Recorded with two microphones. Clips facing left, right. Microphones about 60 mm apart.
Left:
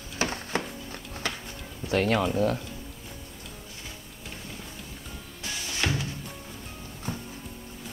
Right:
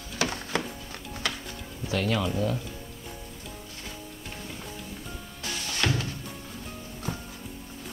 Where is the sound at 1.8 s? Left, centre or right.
Left.